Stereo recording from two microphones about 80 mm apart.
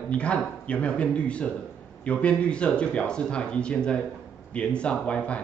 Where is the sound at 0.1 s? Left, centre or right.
Centre.